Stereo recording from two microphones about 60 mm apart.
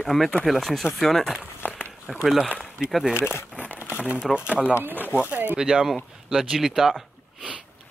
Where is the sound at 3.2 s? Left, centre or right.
Left.